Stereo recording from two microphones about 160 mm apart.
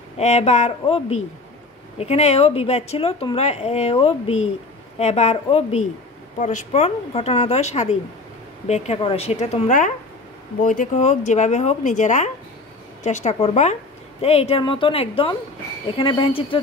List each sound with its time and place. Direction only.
0.2 s speech: 45° left (ahead or behind)